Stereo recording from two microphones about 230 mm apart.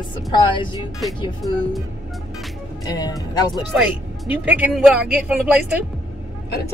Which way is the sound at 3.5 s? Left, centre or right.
Centre.